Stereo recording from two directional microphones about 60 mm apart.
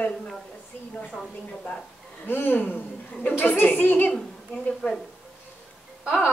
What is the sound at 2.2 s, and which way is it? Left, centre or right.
A woman's voice, left.